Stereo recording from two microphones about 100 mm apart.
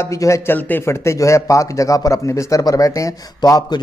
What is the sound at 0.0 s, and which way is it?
Speech, 30° left (ahead or behind).